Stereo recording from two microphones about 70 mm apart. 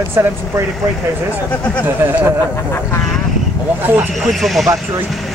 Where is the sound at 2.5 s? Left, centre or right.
Left.